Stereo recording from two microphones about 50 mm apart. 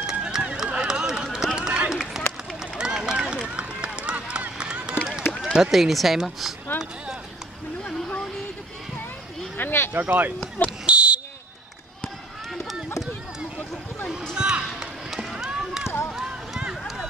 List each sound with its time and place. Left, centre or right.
0.0 s run: centre
5.4 s speech: centre
9.6 s speech: left
9.9 s speech: right
10.9 s fire alarm: right
14.3 s a sound: centre
16.1 s run: centre